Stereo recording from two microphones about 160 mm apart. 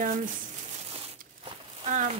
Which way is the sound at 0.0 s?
60° right (ahead or behind).